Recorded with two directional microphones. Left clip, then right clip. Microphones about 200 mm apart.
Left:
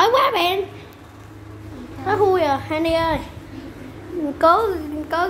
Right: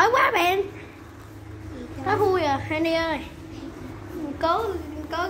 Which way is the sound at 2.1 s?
10° left (ahead or behind).